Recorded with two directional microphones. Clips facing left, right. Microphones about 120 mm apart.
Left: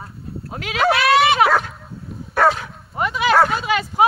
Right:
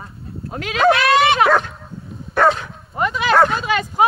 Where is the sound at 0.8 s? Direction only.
10° left (ahead or behind).